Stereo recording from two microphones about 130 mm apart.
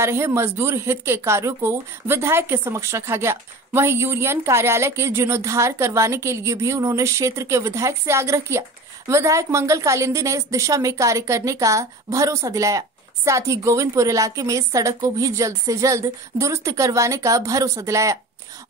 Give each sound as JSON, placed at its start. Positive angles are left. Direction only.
{"t": 0.0, "sound": "speech", "side_deg": -20}